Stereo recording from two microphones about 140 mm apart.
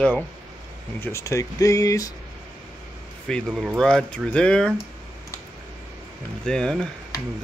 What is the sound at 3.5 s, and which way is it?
Speech, centre (ahead or behind).